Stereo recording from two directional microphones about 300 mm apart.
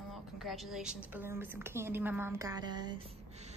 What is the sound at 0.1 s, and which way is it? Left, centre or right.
A woman's voice, centre.